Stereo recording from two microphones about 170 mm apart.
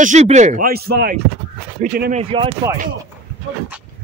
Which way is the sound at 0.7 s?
65° right (ahead or behind).